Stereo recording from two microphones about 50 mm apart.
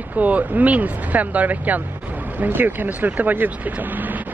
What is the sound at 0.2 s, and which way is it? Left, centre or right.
Speech, right.